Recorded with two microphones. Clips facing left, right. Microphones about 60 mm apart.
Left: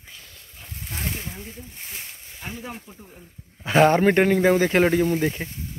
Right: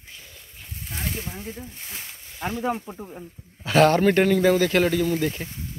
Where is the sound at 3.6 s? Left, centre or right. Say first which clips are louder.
Left 1 dB; left.